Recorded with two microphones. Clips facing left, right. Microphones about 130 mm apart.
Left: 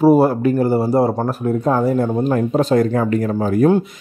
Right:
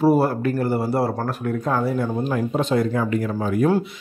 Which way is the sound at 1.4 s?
30° left (ahead or behind).